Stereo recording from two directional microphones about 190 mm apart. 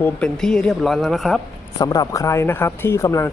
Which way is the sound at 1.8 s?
20° left (ahead or behind).